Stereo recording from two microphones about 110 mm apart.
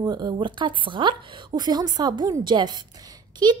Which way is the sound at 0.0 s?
40° right (ahead or behind).